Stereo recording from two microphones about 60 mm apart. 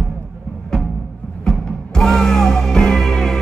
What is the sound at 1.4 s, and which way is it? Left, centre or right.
Music, centre.